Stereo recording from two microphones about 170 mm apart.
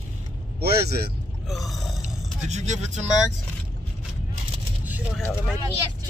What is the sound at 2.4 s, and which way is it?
Speech, 45° right (ahead or behind).